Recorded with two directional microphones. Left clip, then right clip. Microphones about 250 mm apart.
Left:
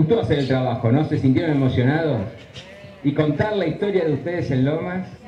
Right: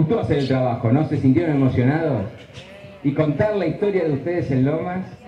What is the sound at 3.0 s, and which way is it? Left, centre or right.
Speech, centre.